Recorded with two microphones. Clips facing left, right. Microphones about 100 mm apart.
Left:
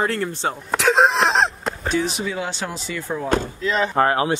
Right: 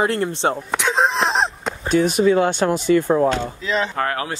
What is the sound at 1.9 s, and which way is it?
Speech, 50° right (ahead or behind).